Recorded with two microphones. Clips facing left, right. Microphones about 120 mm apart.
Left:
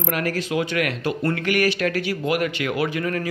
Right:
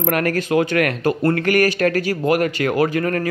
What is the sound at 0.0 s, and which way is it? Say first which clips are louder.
Speech: right 5 dB; 55° right (ahead or behind).